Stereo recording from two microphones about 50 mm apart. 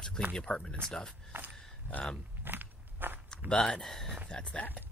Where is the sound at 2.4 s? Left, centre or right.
Right.